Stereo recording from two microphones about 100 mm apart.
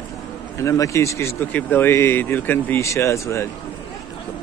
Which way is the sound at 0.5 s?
30° left (ahead or behind).